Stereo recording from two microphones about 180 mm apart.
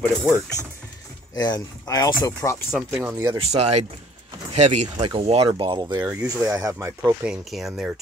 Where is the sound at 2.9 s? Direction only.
15° right (ahead or behind).